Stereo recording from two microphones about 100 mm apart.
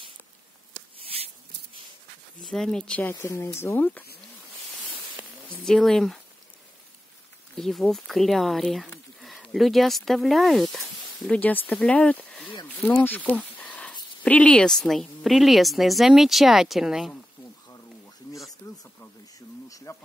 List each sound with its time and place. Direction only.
2.4 s a woman's voice: 5° left (ahead or behind)
3.0 s speech: 25° left (ahead or behind)
5.6 s a woman's voice: 5° left (ahead or behind)
7.5 s a woman's voice: 5° left (ahead or behind)
13.0 s a sound: 15° left (ahead or behind)
14.2 s a woman's voice: 10° left (ahead or behind); by 17.1 s 5° right (ahead or behind)
19.7 s insect: 30° left (ahead or behind)